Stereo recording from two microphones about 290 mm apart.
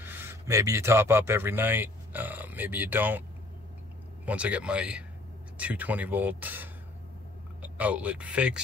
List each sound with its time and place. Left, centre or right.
0.0 s speech: centre
4.3 s speech: centre